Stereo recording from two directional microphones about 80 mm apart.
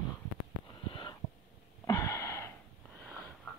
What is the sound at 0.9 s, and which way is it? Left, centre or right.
Snort, left.